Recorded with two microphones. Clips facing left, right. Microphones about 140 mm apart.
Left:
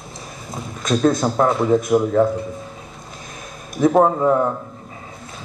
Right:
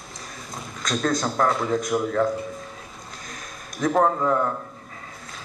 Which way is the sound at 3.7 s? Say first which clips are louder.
Left 6 dB; 20° left (ahead or behind).